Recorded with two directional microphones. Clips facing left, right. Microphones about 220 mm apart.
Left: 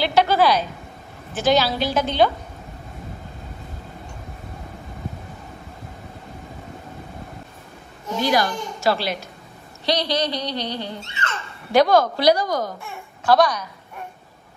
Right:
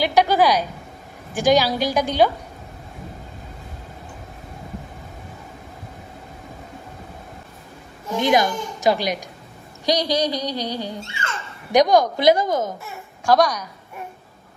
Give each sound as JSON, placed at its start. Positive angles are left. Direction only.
{"t": 0.0, "sound": "a woman's voice", "side_deg": -15}
{"t": 8.2, "sound": "a woman's voice", "side_deg": -20}
{"t": 12.8, "sound": "speech", "side_deg": -10}